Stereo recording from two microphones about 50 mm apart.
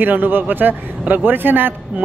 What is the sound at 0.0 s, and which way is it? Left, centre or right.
A man's voice, right.